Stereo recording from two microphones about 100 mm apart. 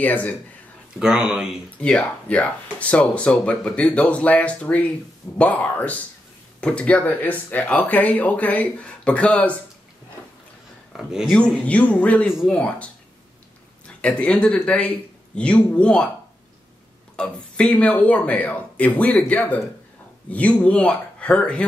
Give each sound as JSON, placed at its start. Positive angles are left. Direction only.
{"t": 0.0, "sound": "speech", "side_deg": 15}
{"t": 0.9, "sound": "speech", "side_deg": -5}
{"t": 1.8, "sound": "speech", "side_deg": 15}
{"t": 10.9, "sound": "a man's voice", "side_deg": -5}
{"t": 11.3, "sound": "speech", "side_deg": 15}
{"t": 17.2, "sound": "speech", "side_deg": 10}